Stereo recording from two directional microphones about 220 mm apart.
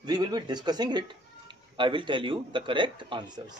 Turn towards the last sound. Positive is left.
turn(degrees=-20)  # may be behind; listen again after turning